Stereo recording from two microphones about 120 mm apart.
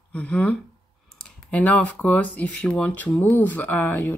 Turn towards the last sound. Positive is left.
turn(degrees=15)  # may be behind; listen again after turning